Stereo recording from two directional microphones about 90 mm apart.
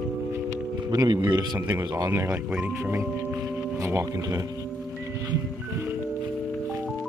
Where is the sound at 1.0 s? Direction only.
50° right (ahead or behind).